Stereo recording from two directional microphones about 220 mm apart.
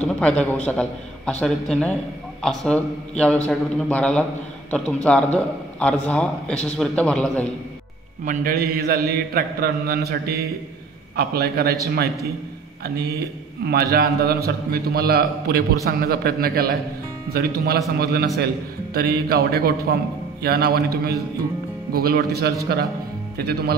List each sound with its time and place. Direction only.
0.2 s a man's voice: 5° left (ahead or behind)
8.3 s a man's voice: 45° right (ahead or behind)
13.7 s a man's voice: 45° right (ahead or behind)